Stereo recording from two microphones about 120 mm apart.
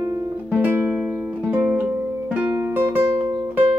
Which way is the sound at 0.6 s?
15° right (ahead or behind).